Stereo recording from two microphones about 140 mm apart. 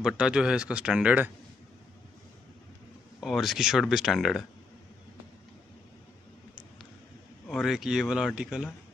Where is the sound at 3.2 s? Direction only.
Centre (ahead or behind).